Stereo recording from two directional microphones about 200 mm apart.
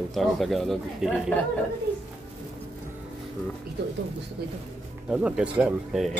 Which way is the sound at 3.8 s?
60° right (ahead or behind).